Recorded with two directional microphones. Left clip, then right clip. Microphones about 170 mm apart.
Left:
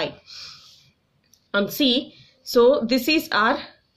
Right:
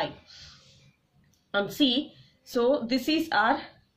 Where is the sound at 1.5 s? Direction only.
35° left (ahead or behind).